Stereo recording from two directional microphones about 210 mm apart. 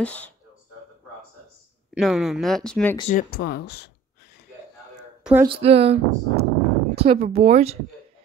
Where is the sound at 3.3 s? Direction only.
50° left (ahead or behind).